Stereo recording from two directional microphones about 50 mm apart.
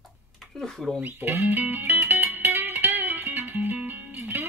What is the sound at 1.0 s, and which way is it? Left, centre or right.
Music, right.